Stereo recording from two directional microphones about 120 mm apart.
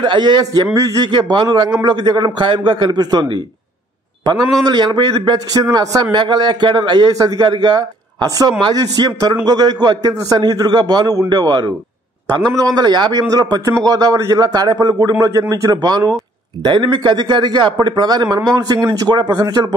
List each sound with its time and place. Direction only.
0.0 s a man's voice: 40° right (ahead or behind)